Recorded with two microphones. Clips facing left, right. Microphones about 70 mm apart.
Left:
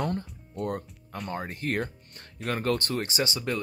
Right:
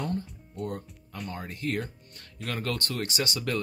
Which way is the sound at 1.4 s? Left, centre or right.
Left.